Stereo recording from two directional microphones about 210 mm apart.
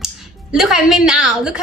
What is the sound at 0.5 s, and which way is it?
A woman's voice, centre (ahead or behind).